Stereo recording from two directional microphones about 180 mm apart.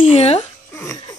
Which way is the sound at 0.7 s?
15° left (ahead or behind).